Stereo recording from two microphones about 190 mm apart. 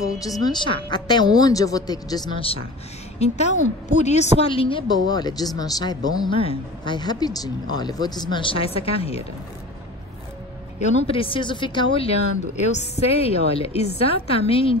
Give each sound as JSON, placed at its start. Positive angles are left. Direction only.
{"t": 0.0, "sound": "a woman's voice", "side_deg": 20}
{"t": 10.8, "sound": "speech", "side_deg": 35}